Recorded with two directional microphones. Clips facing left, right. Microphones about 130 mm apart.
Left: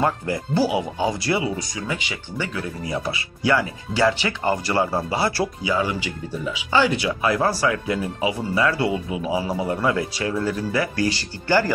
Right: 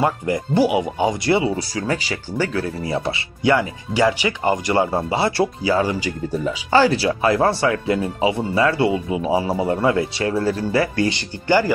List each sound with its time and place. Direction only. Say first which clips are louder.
0.0 s speech: right 3 dB; 20° right (ahead or behind)
1.9 s speech: right 5 dB; 40° right (ahead or behind)
5.7 s speech: right 4 dB; 40° right (ahead or behind); by 11.7 s 15° right (ahead or behind)